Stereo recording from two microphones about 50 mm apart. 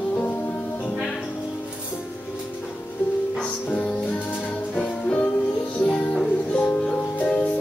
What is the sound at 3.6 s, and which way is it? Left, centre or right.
Music, left.